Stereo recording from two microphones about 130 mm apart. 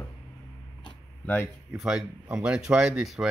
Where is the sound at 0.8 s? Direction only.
15° left (ahead or behind).